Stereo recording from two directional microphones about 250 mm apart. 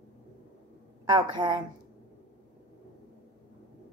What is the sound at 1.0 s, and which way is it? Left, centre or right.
Speech, centre.